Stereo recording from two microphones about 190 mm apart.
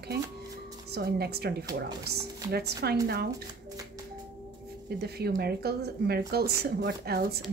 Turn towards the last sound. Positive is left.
turn(degrees=-55)  # may be behind; listen again after turning